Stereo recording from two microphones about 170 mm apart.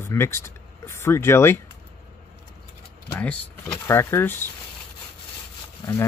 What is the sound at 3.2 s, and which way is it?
Speech, 5° left (ahead or behind).